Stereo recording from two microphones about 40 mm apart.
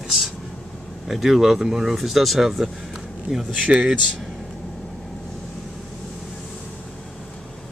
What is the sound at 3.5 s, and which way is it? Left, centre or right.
Speech, right.